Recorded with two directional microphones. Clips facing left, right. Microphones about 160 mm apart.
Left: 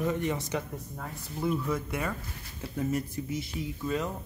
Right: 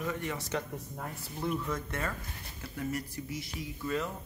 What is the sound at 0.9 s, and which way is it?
Speech, 5° right (ahead or behind).